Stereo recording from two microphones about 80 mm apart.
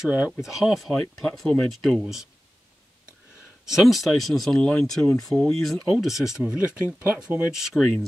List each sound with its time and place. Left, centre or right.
0.0 s speech: centre
3.6 s speech: centre
7.5 s speech: centre